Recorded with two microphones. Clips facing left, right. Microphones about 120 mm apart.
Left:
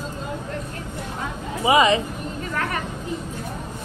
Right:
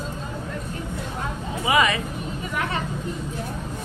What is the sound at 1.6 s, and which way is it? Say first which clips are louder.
Speech: left 4 dB; 25° left (ahead or behind).